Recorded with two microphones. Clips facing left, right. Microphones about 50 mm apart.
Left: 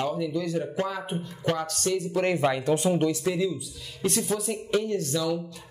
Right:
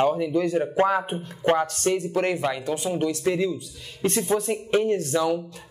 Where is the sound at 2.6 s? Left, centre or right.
Left.